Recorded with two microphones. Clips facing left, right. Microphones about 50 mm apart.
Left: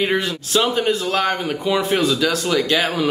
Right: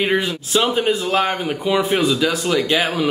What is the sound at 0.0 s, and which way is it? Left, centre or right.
A man's voice, centre.